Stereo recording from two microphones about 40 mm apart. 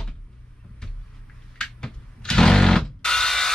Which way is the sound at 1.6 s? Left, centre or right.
Centre.